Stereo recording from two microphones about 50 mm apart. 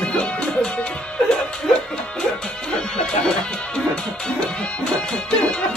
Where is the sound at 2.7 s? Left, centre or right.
Centre.